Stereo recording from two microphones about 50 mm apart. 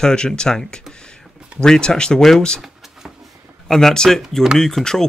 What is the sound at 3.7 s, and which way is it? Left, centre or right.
Speech, centre.